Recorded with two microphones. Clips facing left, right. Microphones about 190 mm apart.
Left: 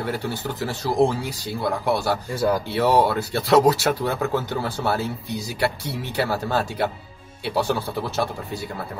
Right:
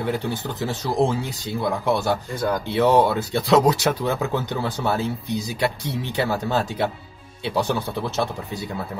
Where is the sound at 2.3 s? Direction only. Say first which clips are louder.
Left 2 dB; 5° left (ahead or behind).